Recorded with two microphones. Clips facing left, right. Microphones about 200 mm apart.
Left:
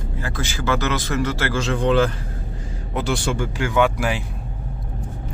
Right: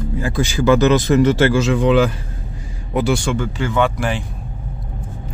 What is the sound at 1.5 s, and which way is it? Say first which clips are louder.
Speech: right 4 dB; 5° right (ahead or behind).